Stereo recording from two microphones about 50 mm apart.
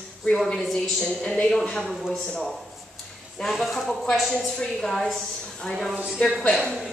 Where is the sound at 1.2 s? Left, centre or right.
Centre.